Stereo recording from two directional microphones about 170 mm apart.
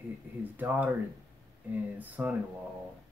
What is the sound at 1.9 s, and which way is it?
Speech, 10° right (ahead or behind).